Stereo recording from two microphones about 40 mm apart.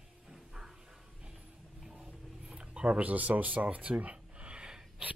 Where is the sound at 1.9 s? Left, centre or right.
Right.